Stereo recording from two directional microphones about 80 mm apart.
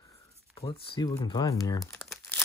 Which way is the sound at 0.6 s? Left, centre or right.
Left.